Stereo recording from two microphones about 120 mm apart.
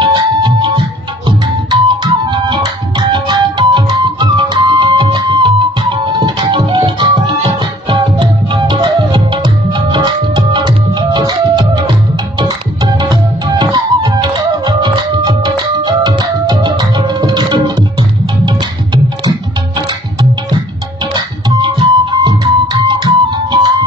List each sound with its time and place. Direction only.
0.0 s music: 40° right (ahead or behind)
21.1 s music: 40° right (ahead or behind)